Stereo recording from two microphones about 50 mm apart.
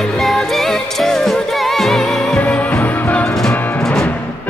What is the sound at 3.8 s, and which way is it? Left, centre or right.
Music, centre.